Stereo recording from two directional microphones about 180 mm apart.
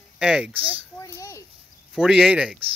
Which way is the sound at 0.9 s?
15° left (ahead or behind).